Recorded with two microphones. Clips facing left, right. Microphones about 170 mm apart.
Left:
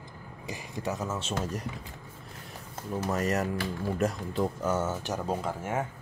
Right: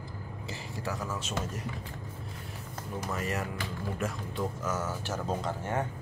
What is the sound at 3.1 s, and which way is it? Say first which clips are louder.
Speech: left 6 dB; 40° left (ahead or behind).